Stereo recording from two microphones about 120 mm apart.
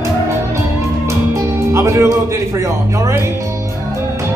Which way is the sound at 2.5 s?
25° right (ahead or behind).